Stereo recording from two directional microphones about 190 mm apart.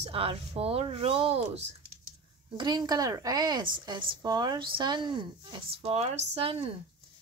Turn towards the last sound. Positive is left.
turn(degrees=-30)  # may be behind; listen again after turning